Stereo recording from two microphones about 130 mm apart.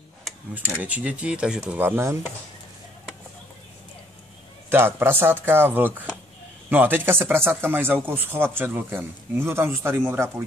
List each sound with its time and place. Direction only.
0.7 s speech: 10° right (ahead or behind)
1.8 s speech: 20° right (ahead or behind)
4.6 s speech: 15° right (ahead or behind)